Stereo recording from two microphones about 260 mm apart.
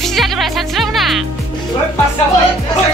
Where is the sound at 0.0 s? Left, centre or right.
Centre.